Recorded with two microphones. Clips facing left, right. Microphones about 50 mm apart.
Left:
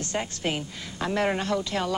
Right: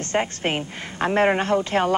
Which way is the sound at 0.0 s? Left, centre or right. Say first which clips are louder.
Right 6 dB; right.